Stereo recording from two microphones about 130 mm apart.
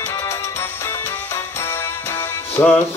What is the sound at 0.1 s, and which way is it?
Music, 25° left (ahead or behind).